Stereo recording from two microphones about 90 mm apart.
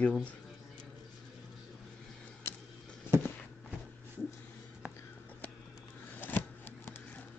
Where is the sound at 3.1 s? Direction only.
25° left (ahead or behind).